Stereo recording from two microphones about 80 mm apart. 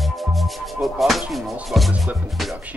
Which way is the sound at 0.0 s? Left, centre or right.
Centre.